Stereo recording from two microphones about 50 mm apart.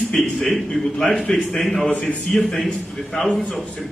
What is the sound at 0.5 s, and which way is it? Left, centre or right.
A man's voice, centre.